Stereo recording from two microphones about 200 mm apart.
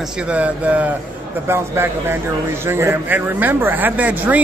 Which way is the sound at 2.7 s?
10° right (ahead or behind).